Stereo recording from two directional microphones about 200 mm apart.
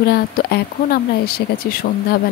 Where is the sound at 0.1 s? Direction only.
50° left (ahead or behind).